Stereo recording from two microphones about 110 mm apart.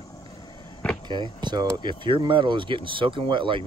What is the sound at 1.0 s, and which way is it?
Speech, 45° right (ahead or behind).